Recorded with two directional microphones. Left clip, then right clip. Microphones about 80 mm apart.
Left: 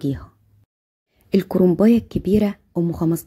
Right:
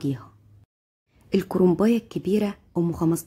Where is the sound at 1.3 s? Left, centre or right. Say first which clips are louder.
Left 3 dB; left.